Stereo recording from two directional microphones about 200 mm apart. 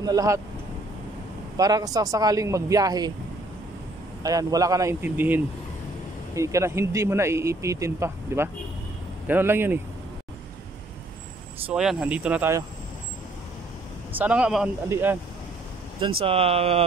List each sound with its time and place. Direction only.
0.0 s speech: 15° right (ahead or behind)
1.6 s speech: 20° right (ahead or behind)
4.2 s speech: 20° right (ahead or behind)
11.7 s speech: centre (ahead or behind)
14.1 s speech: 5° right (ahead or behind)
16.2 s speech: 30° right (ahead or behind)